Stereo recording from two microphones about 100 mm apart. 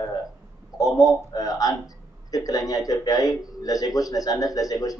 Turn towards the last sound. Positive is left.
turn(degrees=35)  # may be behind; listen again after turning